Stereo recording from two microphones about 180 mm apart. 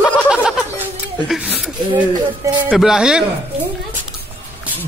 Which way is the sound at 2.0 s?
25° right (ahead or behind).